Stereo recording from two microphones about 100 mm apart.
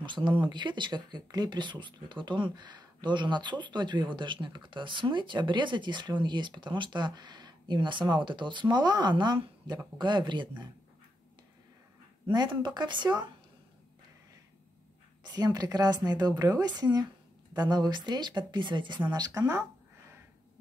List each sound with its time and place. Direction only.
0.0 s speech: 50° right (ahead or behind)
12.3 s speech: 50° right (ahead or behind)
15.2 s speech: 45° right (ahead or behind)
19.1 s speech: 40° right (ahead or behind)